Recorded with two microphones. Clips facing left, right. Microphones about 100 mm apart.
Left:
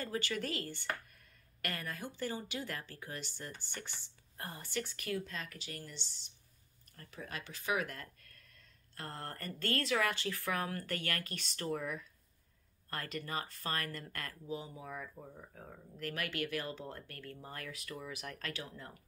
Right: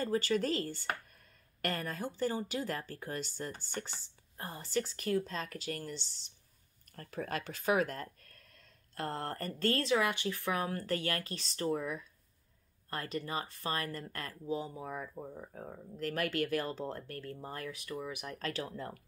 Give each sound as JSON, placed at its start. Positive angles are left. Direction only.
{"t": 0.0, "sound": "speech", "side_deg": -35}
{"t": 1.1, "sound": "a sound", "side_deg": -35}
{"t": 2.1, "sound": "speech", "side_deg": -35}
{"t": 7.0, "sound": "speech", "side_deg": -50}
{"t": 7.7, "sound": "speech", "side_deg": -35}
{"t": 18.5, "sound": "speech", "side_deg": -40}